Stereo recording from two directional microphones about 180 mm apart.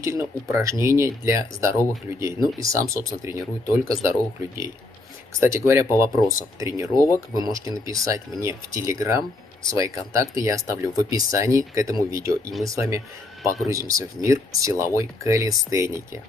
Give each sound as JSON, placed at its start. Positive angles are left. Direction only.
{"t": 0.0, "sound": "speech", "side_deg": -15}